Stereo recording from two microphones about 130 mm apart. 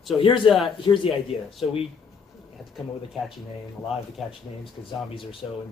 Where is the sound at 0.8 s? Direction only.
40° left (ahead or behind).